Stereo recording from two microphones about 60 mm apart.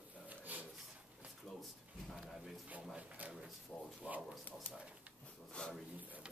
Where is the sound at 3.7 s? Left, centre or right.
Centre.